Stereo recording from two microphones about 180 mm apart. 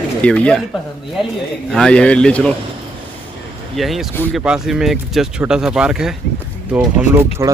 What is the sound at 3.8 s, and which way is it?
Speech, centre (ahead or behind).